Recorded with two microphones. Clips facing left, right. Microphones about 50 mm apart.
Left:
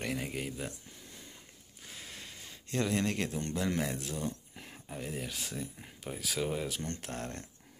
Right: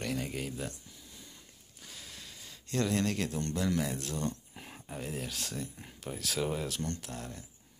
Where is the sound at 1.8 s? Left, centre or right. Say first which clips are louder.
Left 2 dB; left.